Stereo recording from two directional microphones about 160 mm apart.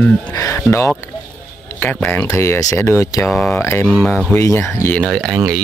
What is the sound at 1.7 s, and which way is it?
Speech, 5° left (ahead or behind).